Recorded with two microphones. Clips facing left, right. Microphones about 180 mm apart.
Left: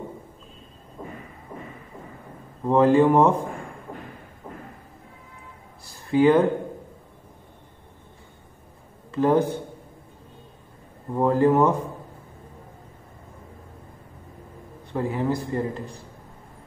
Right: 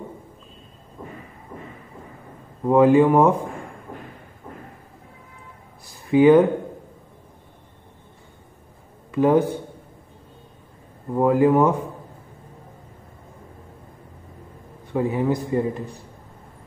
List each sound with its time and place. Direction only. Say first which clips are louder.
2.6 s speech: right 2 dB; 10° right (ahead or behind)
6.1 s speech: right 4 dB; 15° right (ahead or behind)
9.1 s a man's voice: right 3 dB; 15° right (ahead or behind)
11.1 s speech: right 2 dB; 10° right (ahead or behind)
14.9 s speech: right 3 dB; 15° right (ahead or behind)